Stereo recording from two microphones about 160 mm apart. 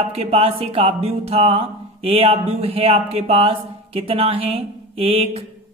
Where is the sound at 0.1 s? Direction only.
40° right (ahead or behind).